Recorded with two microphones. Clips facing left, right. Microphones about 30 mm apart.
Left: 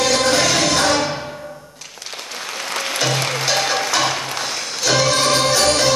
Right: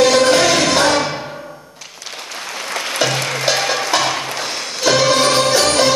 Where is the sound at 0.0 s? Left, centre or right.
Right.